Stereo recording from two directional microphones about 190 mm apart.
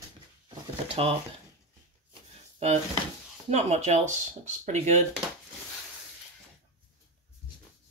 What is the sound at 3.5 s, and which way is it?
Speech, 35° right (ahead or behind).